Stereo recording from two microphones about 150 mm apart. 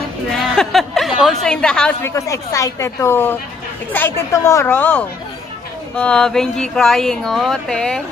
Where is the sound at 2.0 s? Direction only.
20° left (ahead or behind); by 8.0 s 5° left (ahead or behind).